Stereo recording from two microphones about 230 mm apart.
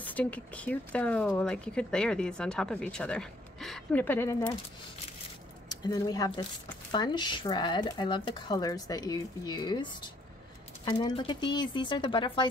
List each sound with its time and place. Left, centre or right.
0.0 s speech: centre
5.7 s speech: centre
10.9 s speech: centre